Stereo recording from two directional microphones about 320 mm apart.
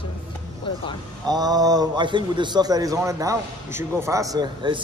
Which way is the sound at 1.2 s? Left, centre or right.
Centre.